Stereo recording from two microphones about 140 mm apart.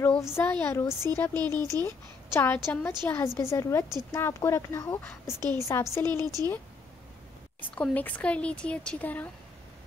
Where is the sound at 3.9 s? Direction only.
30° right (ahead or behind).